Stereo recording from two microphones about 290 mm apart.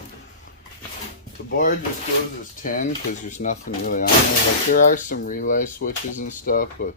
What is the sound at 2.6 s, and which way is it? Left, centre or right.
Speech, left.